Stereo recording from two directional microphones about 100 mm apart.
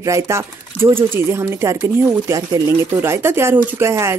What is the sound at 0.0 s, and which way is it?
Speech, 30° right (ahead or behind).